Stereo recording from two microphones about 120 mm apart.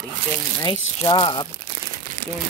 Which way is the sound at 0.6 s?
40° left (ahead or behind).